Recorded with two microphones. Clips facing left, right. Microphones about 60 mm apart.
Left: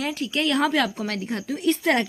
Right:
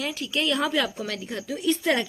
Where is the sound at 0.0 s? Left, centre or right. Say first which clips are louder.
Left 2 dB; left.